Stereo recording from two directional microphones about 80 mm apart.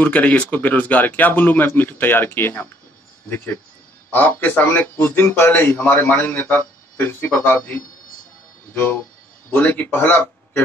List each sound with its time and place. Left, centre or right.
0.0 s a man's voice: left
4.1 s a man's voice: left